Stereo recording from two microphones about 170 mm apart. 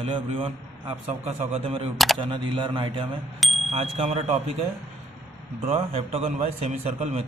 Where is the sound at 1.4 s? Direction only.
35° right (ahead or behind).